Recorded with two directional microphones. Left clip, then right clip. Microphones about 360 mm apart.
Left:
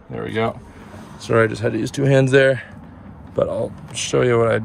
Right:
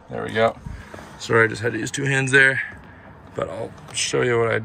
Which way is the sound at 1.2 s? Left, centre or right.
Centre.